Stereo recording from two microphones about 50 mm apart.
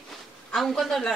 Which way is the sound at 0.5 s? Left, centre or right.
Centre.